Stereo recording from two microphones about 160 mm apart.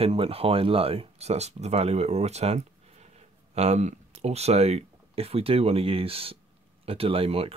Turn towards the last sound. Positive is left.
turn(degrees=-35)  # may be behind; listen again after turning